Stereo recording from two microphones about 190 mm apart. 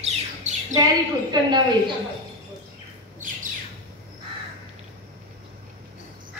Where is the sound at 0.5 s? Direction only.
40° right (ahead or behind).